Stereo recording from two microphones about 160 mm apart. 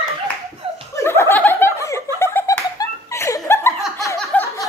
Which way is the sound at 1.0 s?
15° left (ahead or behind).